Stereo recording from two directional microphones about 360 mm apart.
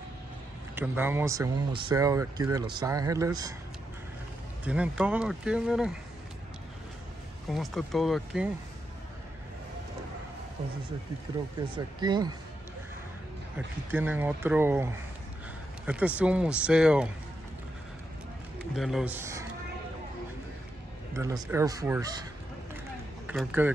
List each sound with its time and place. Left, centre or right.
0.7 s speech: centre
4.6 s speech: centre
7.4 s speech: centre
10.6 s speech: centre
13.9 s speech: centre
18.8 s speech: centre
21.2 s speech: centre
23.2 s speech: centre